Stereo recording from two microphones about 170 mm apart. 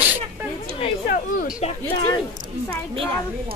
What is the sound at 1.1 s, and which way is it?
Speech, 55° left (ahead or behind).